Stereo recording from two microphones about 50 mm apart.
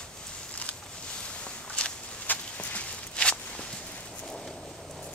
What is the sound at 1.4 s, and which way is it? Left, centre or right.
Walk, left.